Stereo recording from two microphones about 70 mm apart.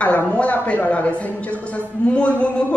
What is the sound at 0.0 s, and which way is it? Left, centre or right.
Speech, centre.